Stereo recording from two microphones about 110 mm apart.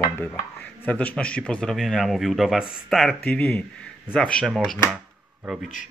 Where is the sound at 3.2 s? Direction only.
15° left (ahead or behind).